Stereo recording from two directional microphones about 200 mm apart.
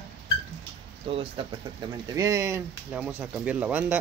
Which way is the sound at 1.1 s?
30° right (ahead or behind).